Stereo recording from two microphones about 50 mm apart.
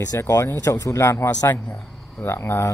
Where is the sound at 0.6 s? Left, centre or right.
Left.